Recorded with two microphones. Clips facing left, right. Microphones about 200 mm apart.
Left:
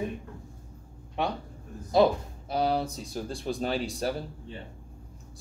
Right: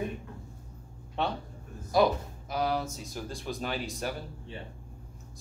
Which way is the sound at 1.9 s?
25° left (ahead or behind).